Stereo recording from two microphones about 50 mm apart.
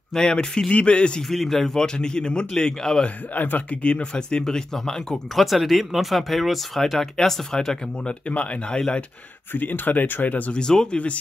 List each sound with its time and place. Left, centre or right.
0.1 s a man's voice: centre
1.3 s a man's voice: centre
3.3 s speech: left; by 5.4 s centre
5.4 s speech: centre
8.3 s speech: left
9.5 s speech: left
10.5 s a man's voice: centre